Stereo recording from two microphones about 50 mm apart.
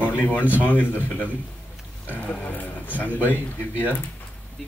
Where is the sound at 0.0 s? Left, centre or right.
Left.